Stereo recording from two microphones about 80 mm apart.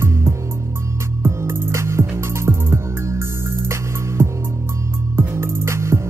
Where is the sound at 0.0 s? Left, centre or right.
Right.